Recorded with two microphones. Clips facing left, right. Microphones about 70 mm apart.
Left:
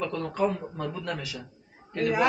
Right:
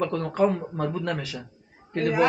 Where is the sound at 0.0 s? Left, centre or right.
Right.